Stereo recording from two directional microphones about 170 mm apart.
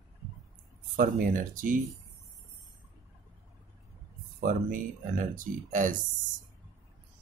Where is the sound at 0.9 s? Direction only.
55° right (ahead or behind).